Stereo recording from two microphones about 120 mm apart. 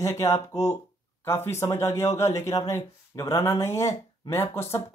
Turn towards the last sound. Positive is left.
turn(degrees=20)  # may be behind; listen again after turning